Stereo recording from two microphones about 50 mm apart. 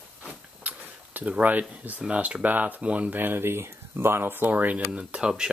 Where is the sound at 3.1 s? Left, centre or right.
Right.